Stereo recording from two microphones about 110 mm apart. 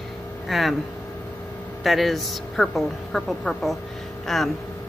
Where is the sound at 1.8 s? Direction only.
Centre (ahead or behind).